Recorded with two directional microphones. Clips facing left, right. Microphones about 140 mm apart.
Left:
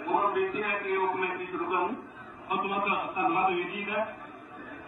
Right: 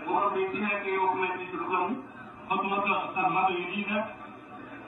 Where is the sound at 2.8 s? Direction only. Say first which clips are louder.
Right 1 dB; centre (ahead or behind).